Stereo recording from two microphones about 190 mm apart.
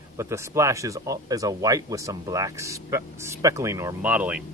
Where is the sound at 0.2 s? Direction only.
15° right (ahead or behind).